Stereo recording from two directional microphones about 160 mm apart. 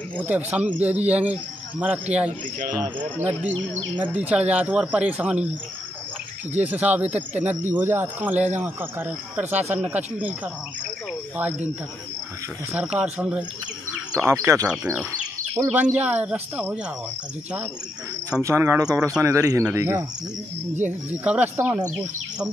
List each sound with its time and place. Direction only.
0.2 s speech: 10° right (ahead or behind)
12.7 s speech: 5° right (ahead or behind)
13.9 s bird: 5° right (ahead or behind)
14.3 s speech: 20° right (ahead or behind)
18.4 s speech: 15° right (ahead or behind)
21.1 s speech: 10° right (ahead or behind)